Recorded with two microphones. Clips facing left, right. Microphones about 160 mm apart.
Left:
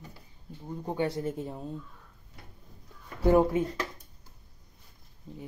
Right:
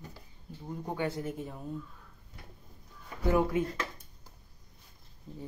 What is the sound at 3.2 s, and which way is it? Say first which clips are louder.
Speech: left 5 dB; 30° left (ahead or behind).